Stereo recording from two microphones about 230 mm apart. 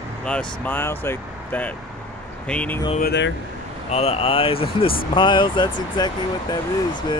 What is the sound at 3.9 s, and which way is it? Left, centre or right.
Speech, left.